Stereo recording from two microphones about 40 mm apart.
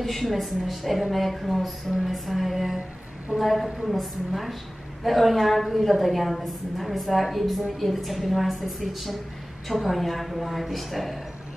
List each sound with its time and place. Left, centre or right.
0.0 s a woman's voice: centre